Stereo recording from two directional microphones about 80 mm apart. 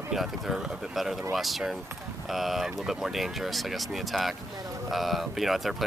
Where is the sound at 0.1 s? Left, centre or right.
Centre.